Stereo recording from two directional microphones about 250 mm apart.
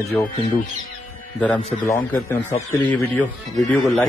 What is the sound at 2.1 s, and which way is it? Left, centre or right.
Speech, centre.